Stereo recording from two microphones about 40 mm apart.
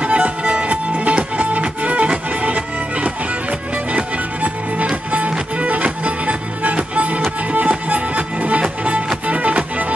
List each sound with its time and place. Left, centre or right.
0.0 s music: right